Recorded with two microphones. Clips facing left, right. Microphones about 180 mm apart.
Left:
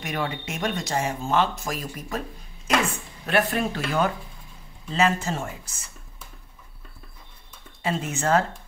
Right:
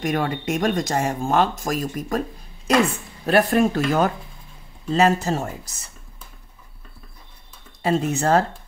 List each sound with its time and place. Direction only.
0.0 s speech: 45° right (ahead or behind)
7.8 s speech: 40° right (ahead or behind)